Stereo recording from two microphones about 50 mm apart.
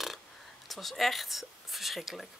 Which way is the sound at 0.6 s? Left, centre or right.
Centre.